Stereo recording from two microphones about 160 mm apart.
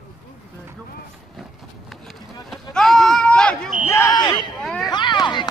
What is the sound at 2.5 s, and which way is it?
Sheep, 5° left (ahead or behind).